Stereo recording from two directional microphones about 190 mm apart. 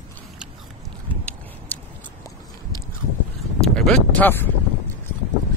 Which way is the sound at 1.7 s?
10° left (ahead or behind).